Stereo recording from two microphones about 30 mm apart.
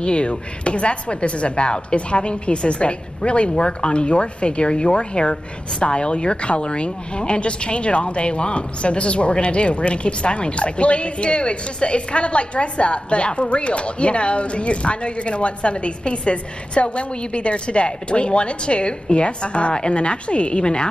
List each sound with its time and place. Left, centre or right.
0.0 s speech: left